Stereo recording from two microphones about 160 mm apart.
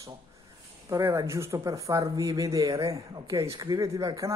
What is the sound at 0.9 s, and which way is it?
Speech, 20° right (ahead or behind).